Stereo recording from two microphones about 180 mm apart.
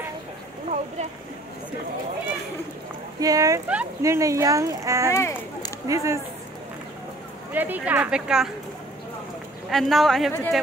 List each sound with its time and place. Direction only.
3.2 s speech: 20° right (ahead or behind)
5.1 s speech: 15° left (ahead or behind)
5.9 s speech: 15° right (ahead or behind)
7.5 s speech: 10° right (ahead or behind)
9.7 s a man's voice: centre (ahead or behind)